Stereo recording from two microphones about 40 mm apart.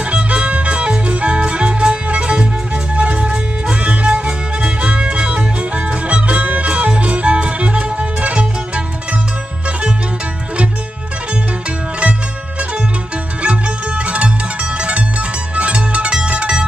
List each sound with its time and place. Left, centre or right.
0.0 s music: right
12.0 s music: right